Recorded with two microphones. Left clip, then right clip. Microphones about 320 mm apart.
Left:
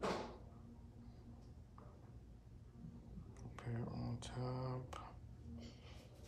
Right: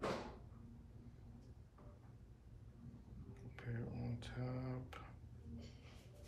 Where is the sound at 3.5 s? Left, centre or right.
Centre.